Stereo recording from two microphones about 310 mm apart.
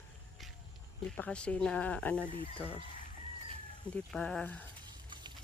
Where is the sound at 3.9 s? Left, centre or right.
Centre.